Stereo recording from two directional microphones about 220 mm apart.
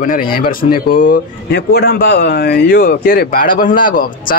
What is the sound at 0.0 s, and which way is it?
Speech, 40° left (ahead or behind).